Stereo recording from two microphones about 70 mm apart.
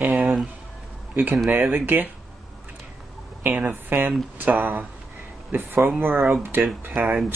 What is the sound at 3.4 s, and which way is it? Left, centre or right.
Speech, right.